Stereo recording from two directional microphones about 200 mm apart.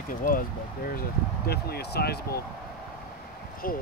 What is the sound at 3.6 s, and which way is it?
Speech, 45° left (ahead or behind).